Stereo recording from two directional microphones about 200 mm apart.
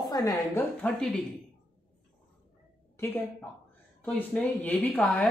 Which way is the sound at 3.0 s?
10° left (ahead or behind).